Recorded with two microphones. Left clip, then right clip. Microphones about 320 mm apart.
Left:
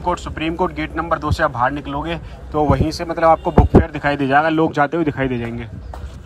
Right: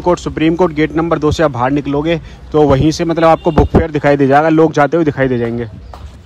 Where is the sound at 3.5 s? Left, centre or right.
Left.